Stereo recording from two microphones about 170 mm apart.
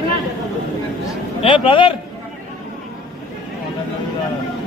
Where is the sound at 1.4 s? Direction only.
30° left (ahead or behind).